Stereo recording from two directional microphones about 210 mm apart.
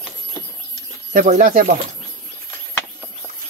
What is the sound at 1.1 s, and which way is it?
Speech, 35° right (ahead or behind).